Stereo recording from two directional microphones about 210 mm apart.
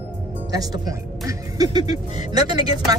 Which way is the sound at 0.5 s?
15° right (ahead or behind).